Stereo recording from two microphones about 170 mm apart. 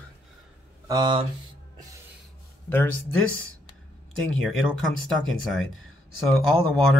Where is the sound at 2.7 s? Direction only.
10° left (ahead or behind).